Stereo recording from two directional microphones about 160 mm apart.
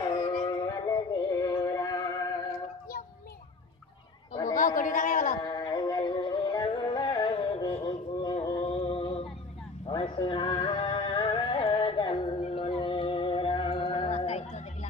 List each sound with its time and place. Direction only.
0.0 s music: 25° left (ahead or behind)
4.6 s a sound: 55° left (ahead or behind)
5.4 s music: 25° left (ahead or behind)